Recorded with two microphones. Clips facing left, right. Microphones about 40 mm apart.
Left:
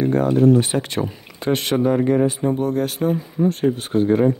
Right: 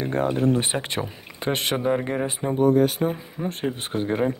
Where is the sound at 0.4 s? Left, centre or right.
Right; by 3.5 s centre.